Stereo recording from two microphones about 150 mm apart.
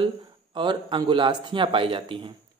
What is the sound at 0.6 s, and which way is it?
A man's voice, 30° right (ahead or behind).